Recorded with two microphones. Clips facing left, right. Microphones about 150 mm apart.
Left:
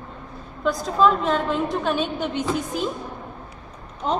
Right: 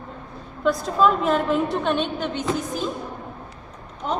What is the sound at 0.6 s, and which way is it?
A woman's voice, centre (ahead or behind).